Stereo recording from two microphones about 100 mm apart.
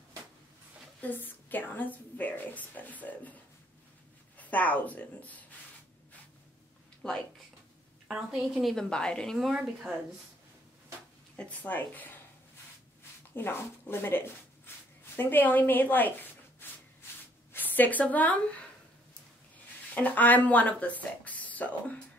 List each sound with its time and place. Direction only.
1.0 s a woman's voice: 20° left (ahead or behind)
4.4 s a woman's voice: 15° left (ahead or behind)
7.0 s speech: 5° left (ahead or behind)
8.1 s a woman's voice: 10° right (ahead or behind)
9.5 s speech: 10° right (ahead or behind)
11.3 s a woman's voice: 15° left (ahead or behind)
13.3 s a woman's voice: 20° left (ahead or behind)
19.9 s speech: 15° left (ahead or behind)